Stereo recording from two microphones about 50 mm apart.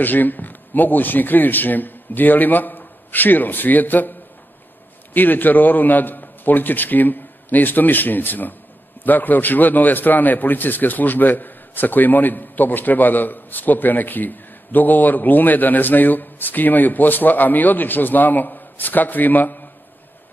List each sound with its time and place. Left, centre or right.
0.0 s speech: left
5.1 s a man's voice: left